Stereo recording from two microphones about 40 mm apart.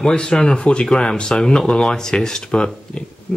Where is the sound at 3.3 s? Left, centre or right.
Left.